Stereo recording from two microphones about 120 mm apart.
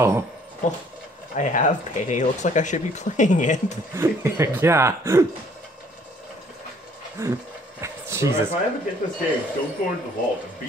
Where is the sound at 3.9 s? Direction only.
20° right (ahead or behind).